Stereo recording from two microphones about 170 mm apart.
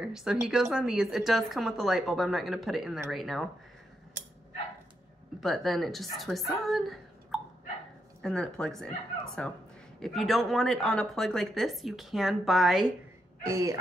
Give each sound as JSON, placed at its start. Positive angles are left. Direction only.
{"t": 0.0, "sound": "speech", "side_deg": -5}
{"t": 5.4, "sound": "speech", "side_deg": 0}
{"t": 6.7, "sound": "a sound", "side_deg": 0}
{"t": 8.2, "sound": "speech", "side_deg": 5}
{"t": 13.5, "sound": "speech", "side_deg": -20}